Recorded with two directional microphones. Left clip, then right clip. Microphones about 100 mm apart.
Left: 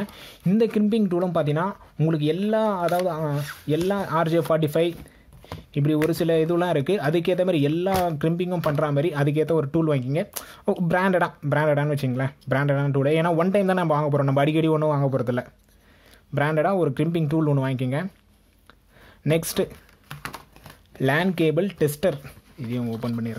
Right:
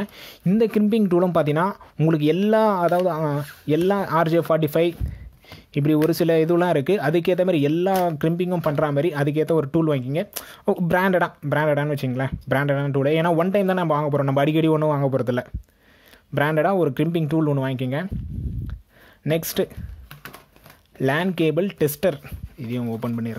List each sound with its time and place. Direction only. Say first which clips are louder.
0.0 s speech: right 2 dB; 30° right (ahead or behind)
19.2 s speech: even; 15° right (ahead or behind)
20.1 s a sound: left 5 dB; 65° left (ahead or behind)
21.0 s speech: even; 20° right (ahead or behind)